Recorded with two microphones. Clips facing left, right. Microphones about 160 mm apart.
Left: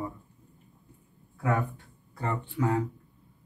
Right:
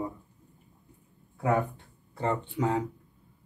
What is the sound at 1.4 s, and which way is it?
Speech, 25° right (ahead or behind).